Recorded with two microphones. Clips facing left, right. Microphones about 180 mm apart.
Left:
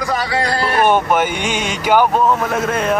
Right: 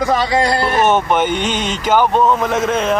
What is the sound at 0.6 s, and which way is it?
Speech, 10° left (ahead or behind).